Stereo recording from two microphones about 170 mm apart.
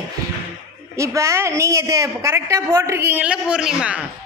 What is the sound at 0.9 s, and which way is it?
A woman's voice, 15° right (ahead or behind).